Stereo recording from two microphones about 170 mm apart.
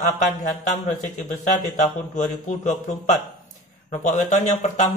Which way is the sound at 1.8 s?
45° left (ahead or behind).